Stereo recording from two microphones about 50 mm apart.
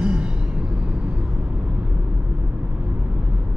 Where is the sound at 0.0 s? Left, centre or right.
Centre.